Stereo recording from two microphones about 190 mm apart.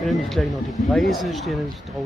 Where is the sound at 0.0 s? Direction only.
Centre (ahead or behind).